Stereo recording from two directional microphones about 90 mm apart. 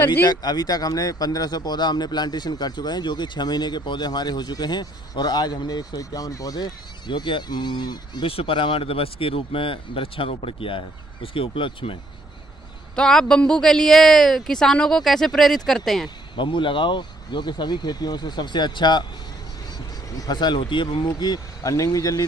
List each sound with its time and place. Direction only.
0.3 s speech: 50° left (ahead or behind); by 12.0 s 75° left (ahead or behind)
12.9 s speech: 10° left (ahead or behind)
16.3 s speech: 65° left (ahead or behind)
20.2 s speech: 50° left (ahead or behind)